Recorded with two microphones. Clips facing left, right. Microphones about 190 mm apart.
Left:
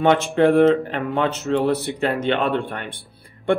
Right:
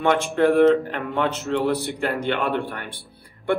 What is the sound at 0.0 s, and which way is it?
Speech, 20° left (ahead or behind).